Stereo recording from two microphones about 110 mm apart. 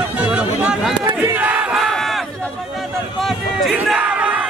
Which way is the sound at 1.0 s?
20° right (ahead or behind).